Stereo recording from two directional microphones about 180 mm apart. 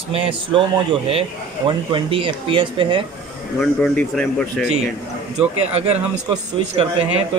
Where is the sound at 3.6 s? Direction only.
5° left (ahead or behind).